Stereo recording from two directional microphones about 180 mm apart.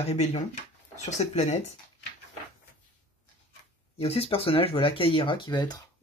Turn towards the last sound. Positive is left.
turn(degrees=25)  # may be behind; listen again after turning